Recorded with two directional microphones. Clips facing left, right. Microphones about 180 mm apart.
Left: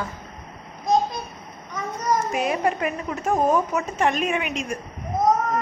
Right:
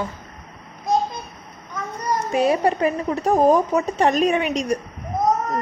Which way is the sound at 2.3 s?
35° right (ahead or behind).